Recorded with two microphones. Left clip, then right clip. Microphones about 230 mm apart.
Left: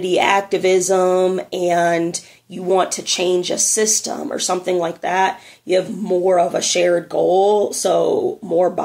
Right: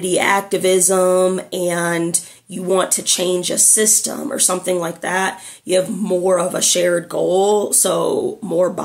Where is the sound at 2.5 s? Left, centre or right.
Centre.